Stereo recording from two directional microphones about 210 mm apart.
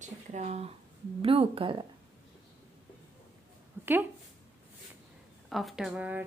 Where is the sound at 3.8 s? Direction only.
10° right (ahead or behind).